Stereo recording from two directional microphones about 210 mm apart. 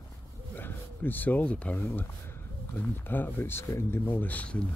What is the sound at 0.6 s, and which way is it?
Speech, 10° left (ahead or behind).